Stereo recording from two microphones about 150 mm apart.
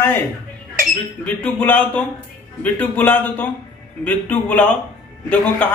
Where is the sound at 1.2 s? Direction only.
10° left (ahead or behind).